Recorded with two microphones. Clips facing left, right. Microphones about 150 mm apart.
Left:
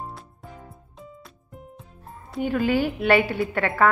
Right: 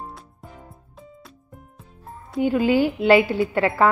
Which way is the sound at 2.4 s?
25° right (ahead or behind).